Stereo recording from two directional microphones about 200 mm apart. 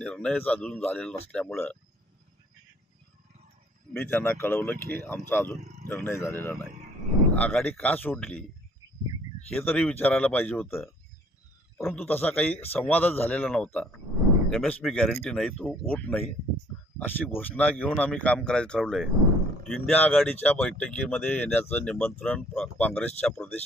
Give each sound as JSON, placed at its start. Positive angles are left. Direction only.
{"t": 0.0, "sound": "speech", "side_deg": 5}
{"t": 3.9, "sound": "speech", "side_deg": 10}
{"t": 5.6, "sound": "speech", "side_deg": -35}
{"t": 5.9, "sound": "speech", "side_deg": 10}
{"t": 8.8, "sound": "a sound", "side_deg": -20}
{"t": 9.5, "sound": "speech", "side_deg": 5}